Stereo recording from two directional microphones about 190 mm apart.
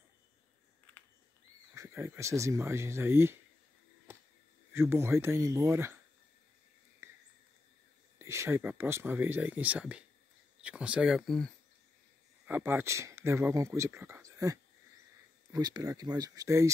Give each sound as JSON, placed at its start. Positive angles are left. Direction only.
{"t": 1.7, "sound": "speech", "side_deg": -15}
{"t": 4.1, "sound": "a sound", "side_deg": -10}
{"t": 4.7, "sound": "speech", "side_deg": -15}
{"t": 7.0, "sound": "a sound", "side_deg": -15}
{"t": 8.2, "sound": "speech", "side_deg": -15}
{"t": 12.4, "sound": "speech", "side_deg": -10}